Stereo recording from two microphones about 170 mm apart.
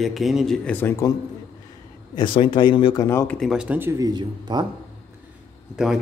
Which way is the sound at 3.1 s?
15° left (ahead or behind).